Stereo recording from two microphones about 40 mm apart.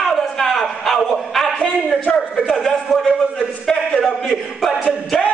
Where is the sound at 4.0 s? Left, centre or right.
Centre.